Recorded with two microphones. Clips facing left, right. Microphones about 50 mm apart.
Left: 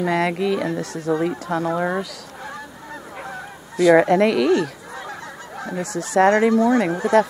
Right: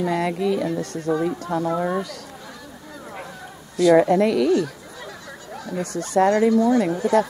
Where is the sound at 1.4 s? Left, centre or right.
Centre.